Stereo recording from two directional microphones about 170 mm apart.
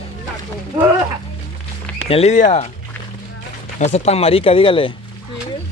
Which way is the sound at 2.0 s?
40° left (ahead or behind).